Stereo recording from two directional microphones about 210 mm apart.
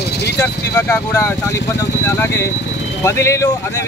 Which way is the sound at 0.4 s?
10° left (ahead or behind).